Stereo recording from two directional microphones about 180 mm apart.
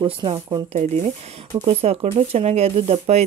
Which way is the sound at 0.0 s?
30° right (ahead or behind).